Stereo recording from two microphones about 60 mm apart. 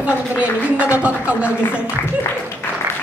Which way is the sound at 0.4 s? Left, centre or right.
Right.